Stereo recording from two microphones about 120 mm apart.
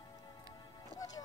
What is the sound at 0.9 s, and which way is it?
Music, 30° left (ahead or behind).